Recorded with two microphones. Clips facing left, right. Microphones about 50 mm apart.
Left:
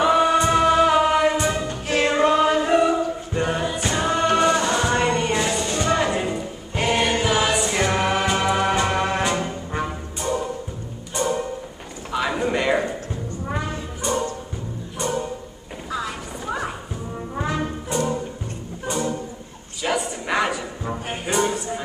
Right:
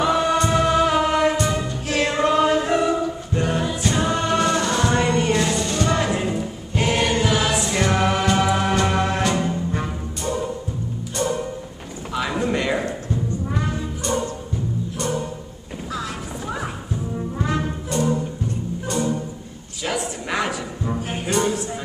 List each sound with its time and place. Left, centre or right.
0.0 s choir: centre
1.3 s music: centre
12.1 s clip-clop: centre
14.1 s music: centre
15.9 s clip-clop: centre
17.6 s brass instrument: centre
18.9 s music: centre
19.8 s a sound: centre
21.3 s music: centre